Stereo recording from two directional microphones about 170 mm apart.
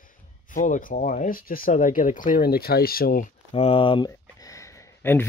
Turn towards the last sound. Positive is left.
turn(degrees=15)  # may be behind; listen again after turning